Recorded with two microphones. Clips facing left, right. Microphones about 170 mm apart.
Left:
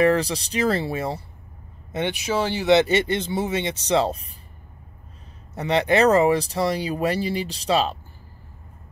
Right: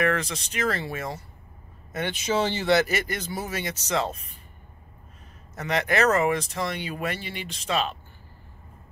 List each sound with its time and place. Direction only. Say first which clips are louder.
0.0 s speech: left 6 dB; 35° left (ahead or behind)
2.2 s speech: right 1 dB; 5° left (ahead or behind)
2.7 s speech: left 7 dB; 25° left (ahead or behind)
5.5 s speech: left 6 dB; 30° left (ahead or behind)